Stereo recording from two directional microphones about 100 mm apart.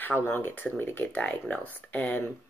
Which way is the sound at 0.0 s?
20° left (ahead or behind).